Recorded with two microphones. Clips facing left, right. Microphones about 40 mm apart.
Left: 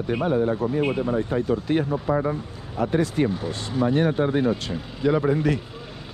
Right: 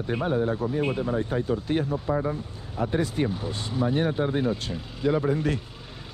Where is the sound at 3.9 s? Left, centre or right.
Left.